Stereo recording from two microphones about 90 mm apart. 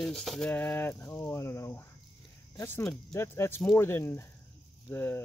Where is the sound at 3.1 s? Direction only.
30° left (ahead or behind).